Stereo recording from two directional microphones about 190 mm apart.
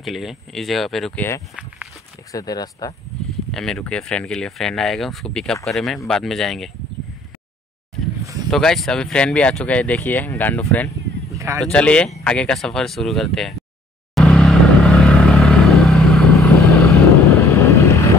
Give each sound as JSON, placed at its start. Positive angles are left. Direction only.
{"t": 0.0, "sound": "speech", "side_deg": 0}
{"t": 2.3, "sound": "speech", "side_deg": 20}
{"t": 3.5, "sound": "speech", "side_deg": 5}
{"t": 8.5, "sound": "speech", "side_deg": 0}
{"t": 11.3, "sound": "a sound", "side_deg": -15}
{"t": 11.6, "sound": "speech", "side_deg": 5}
{"t": 14.1, "sound": "vehicle", "side_deg": 5}
{"t": 17.3, "sound": "vehicle", "side_deg": 15}